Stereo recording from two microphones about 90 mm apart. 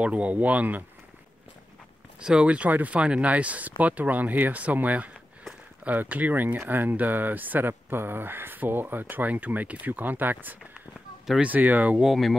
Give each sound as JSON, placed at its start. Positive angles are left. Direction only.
{"t": 0.0, "sound": "speech", "side_deg": -15}
{"t": 2.1, "sound": "speech", "side_deg": -10}
{"t": 12.0, "sound": "speech", "side_deg": 0}